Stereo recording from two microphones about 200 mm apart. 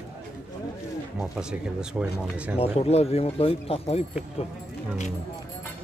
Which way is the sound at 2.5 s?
30° left (ahead or behind).